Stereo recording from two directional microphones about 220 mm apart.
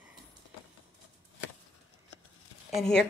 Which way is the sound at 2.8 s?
Centre (ahead or behind).